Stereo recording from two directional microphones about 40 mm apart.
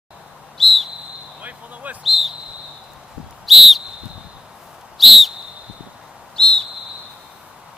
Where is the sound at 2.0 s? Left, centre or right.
Centre.